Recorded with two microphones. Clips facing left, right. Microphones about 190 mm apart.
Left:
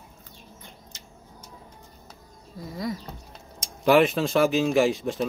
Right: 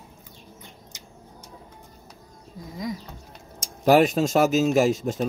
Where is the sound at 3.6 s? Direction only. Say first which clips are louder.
Right 1 dB; 40° right (ahead or behind).